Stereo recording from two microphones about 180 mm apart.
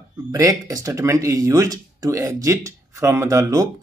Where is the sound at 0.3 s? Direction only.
20° right (ahead or behind).